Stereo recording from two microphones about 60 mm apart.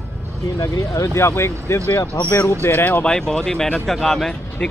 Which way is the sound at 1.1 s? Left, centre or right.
Left.